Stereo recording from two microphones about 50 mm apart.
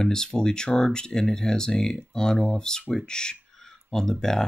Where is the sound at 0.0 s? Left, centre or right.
Centre.